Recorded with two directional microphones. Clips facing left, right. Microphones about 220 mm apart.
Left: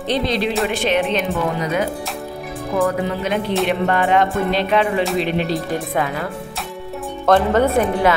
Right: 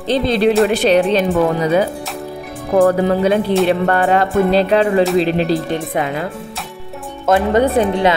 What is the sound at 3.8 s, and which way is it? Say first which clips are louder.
Speech: right 2 dB; 40° right (ahead or behind).